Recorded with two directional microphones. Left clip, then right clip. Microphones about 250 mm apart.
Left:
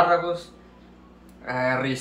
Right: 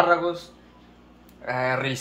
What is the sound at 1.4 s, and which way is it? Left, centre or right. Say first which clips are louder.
Speech: even; right.